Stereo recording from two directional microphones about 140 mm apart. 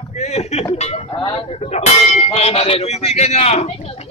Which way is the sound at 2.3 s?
45° left (ahead or behind).